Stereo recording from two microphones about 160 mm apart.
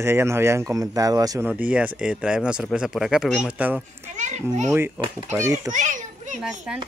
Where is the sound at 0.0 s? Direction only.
15° right (ahead or behind).